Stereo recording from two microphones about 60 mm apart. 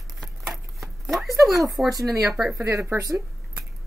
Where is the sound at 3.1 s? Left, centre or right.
Right.